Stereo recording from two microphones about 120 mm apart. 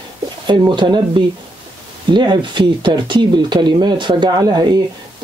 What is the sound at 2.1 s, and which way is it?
Speech, 40° right (ahead or behind).